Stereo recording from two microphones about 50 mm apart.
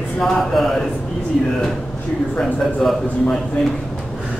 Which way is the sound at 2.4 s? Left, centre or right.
Centre.